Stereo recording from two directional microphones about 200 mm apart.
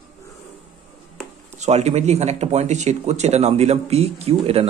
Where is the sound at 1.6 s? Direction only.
35° right (ahead or behind).